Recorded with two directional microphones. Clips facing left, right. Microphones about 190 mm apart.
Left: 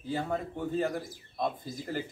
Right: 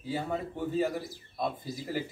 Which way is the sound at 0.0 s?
5° right (ahead or behind).